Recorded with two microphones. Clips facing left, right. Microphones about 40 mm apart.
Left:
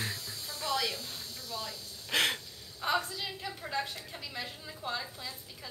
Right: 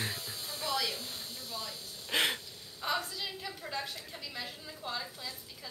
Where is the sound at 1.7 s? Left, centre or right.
Centre.